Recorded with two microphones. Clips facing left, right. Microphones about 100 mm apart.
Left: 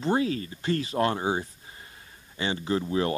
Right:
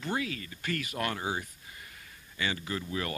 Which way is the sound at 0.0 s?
30° left (ahead or behind).